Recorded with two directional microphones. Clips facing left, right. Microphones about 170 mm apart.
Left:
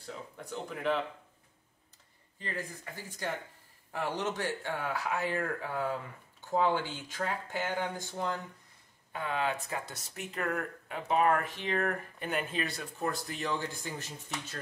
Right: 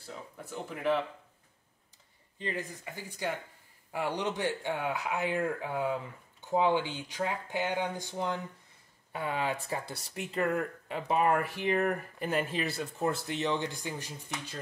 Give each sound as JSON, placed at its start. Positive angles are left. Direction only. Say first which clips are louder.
{"t": 0.0, "sound": "speech", "louder": "left 1 dB", "side_deg": -5}
{"t": 2.3, "sound": "speech", "louder": "right 3 dB", "side_deg": -25}
{"t": 3.9, "sound": "speech", "louder": "right 1 dB", "side_deg": -15}
{"t": 9.7, "sound": "speech", "louder": "right 2 dB", "side_deg": -30}
{"t": 11.1, "sound": "speech", "louder": "even", "side_deg": -15}
{"t": 12.3, "sound": "speech", "louder": "right 3 dB", "side_deg": -30}